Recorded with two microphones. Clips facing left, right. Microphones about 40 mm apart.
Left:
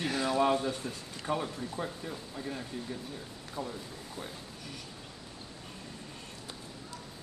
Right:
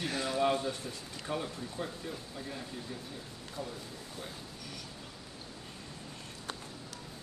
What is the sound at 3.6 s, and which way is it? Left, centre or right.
Speech, left.